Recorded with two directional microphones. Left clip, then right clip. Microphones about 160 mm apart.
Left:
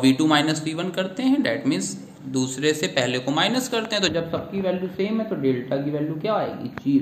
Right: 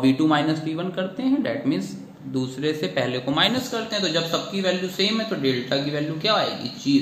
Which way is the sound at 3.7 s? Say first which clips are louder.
Left 2 dB; 35° left (ahead or behind).